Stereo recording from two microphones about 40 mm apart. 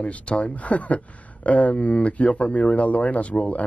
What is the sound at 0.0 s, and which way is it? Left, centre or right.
Speech, left.